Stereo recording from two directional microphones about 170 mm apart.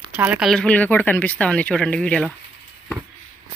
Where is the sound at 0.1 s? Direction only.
5° right (ahead or behind).